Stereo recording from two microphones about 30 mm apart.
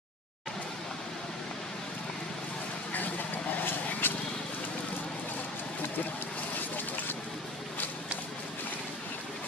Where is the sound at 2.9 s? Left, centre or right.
Left.